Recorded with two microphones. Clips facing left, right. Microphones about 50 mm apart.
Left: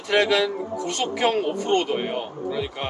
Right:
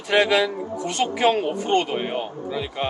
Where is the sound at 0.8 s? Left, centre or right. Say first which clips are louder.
Right 3 dB; centre.